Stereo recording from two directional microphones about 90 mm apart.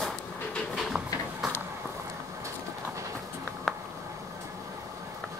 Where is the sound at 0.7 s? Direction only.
Centre (ahead or behind).